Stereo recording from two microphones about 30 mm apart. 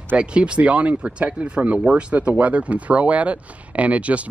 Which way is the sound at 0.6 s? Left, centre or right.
Right.